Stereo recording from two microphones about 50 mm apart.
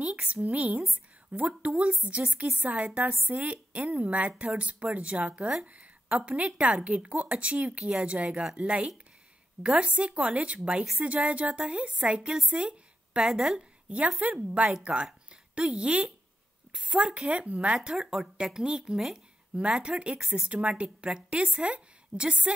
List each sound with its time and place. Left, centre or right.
0.0 s a woman's voice: right
12.2 s a woman's voice: centre; by 17.7 s right
17.8 s speech: centre
19.8 s a woman's voice: right